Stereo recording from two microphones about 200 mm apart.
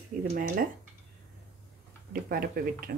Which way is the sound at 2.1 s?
45° right (ahead or behind).